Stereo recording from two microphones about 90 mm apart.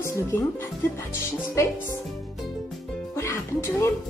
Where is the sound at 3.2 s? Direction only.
30° left (ahead or behind).